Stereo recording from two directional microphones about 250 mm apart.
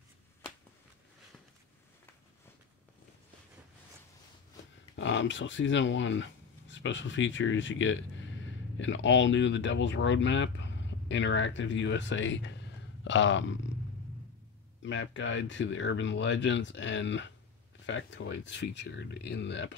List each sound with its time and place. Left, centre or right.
4.9 s speech: left
14.8 s speech: left